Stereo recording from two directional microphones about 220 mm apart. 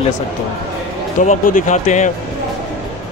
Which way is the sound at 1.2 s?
35° left (ahead or behind).